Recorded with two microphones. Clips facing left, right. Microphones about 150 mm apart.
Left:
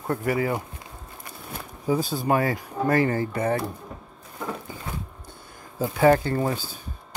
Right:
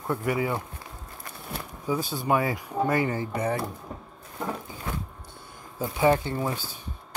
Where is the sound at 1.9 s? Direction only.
40° left (ahead or behind).